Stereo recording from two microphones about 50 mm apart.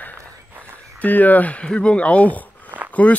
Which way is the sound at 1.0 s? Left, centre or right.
Left.